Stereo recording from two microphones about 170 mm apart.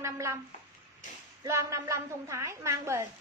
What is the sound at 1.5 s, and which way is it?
A woman's voice, 15° right (ahead or behind).